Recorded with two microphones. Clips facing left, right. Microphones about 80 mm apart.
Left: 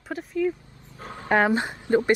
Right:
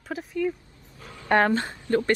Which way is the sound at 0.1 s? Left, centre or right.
Centre.